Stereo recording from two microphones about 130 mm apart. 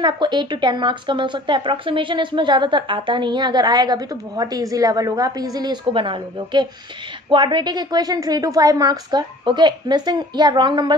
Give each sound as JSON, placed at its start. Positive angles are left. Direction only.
{"t": 0.0, "sound": "speech", "side_deg": -35}